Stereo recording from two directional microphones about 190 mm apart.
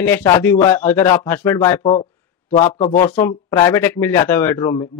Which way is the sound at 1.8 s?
30° left (ahead or behind).